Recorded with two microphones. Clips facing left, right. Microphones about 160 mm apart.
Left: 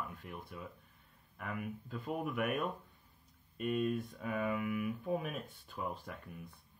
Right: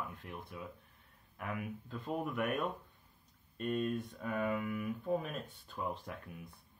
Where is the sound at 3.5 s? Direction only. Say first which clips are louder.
Left 1 dB; 5° left (ahead or behind).